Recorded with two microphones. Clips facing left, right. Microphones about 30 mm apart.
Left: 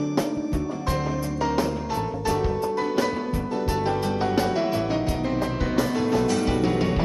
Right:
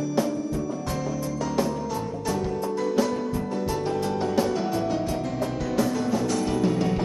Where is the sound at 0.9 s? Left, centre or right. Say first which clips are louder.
Left 2 dB; left.